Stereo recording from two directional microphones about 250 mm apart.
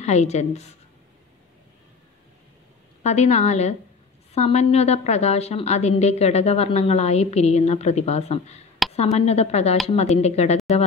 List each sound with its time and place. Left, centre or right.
0.0 s a woman's voice: left
3.0 s a woman's voice: left